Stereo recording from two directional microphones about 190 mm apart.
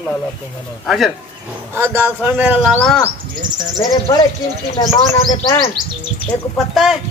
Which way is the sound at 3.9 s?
20° left (ahead or behind).